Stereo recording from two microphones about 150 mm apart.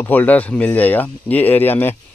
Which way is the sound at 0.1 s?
10° left (ahead or behind).